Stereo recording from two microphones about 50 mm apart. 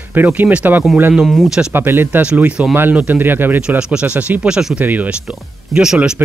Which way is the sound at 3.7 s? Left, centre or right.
Right.